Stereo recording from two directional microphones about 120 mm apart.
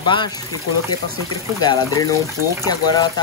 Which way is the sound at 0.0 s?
40° left (ahead or behind).